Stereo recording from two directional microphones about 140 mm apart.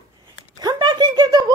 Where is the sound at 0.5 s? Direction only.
30° right (ahead or behind).